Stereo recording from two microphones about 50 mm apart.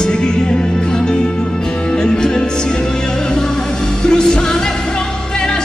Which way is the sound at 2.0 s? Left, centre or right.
Centre.